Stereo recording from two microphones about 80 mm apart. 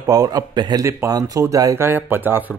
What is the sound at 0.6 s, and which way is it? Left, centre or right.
Speech, right.